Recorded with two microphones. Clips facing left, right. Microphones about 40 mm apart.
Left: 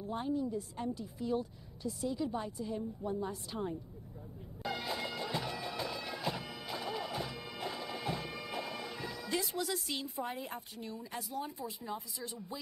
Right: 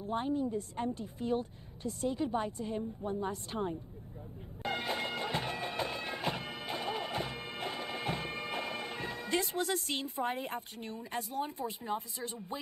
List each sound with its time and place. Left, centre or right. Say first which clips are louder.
0.0 s a woman's voice: right 2 dB; right
4.6 s bagpipes: right 3 dB; right